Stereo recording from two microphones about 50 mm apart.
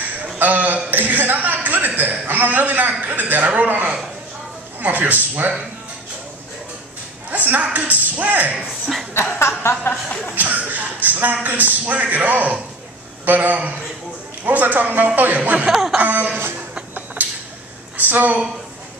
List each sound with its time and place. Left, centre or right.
0.4 s a man's voice: right
7.2 s a woman's voice: right
9.1 s speech: left
9.4 s a sound: left
10.3 s a woman's voice: right
15.7 s a sound: centre
16.0 s a woman's voice: right
16.9 s a sound: right
17.9 s a woman's voice: right